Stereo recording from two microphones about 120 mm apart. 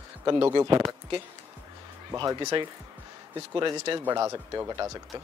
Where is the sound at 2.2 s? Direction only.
35° right (ahead or behind).